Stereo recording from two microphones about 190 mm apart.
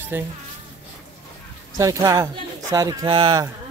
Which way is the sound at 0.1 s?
10° right (ahead or behind).